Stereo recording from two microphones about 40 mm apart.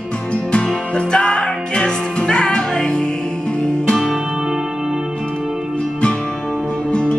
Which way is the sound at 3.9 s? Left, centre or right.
Centre.